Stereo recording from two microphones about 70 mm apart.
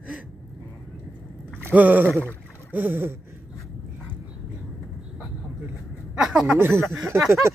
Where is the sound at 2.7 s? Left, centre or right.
Right.